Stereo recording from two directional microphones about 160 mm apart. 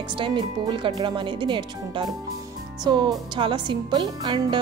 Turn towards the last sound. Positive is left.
turn(degrees=-30)  # may be behind; listen again after turning